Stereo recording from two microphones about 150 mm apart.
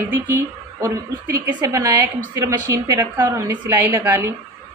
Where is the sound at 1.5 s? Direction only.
20° right (ahead or behind).